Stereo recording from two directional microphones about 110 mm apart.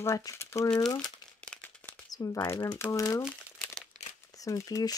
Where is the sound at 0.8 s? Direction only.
35° left (ahead or behind).